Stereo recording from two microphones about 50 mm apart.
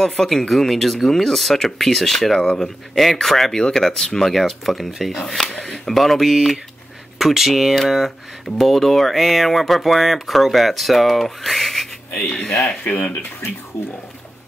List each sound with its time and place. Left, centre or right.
0.0 s speech: centre
12.3 s speech: centre
13.7 s speech: left